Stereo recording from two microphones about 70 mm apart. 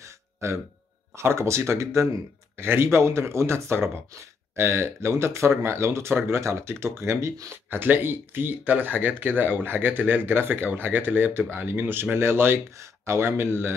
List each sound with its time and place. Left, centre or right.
1.1 s speech: right
7.7 s speech: right